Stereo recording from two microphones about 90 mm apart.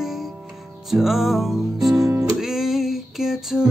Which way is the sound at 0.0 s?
5° right (ahead or behind).